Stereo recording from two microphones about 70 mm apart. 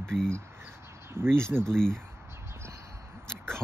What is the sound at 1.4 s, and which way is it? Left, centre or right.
Speech, right.